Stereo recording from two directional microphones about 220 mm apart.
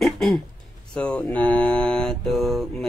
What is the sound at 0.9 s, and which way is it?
Speech, 5° left (ahead or behind).